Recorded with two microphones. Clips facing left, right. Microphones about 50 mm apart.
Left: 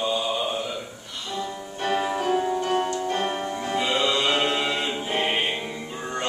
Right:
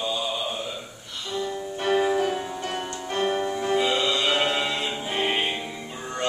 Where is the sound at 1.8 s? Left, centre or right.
Centre.